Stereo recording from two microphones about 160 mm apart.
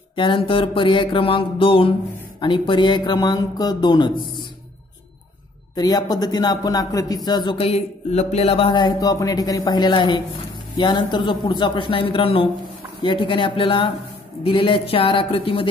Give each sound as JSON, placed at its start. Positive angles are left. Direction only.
{"t": 0.1, "sound": "music", "side_deg": 30}
{"t": 2.4, "sound": "speech", "side_deg": 30}
{"t": 5.8, "sound": "speech", "side_deg": 25}
{"t": 10.8, "sound": "music", "side_deg": 30}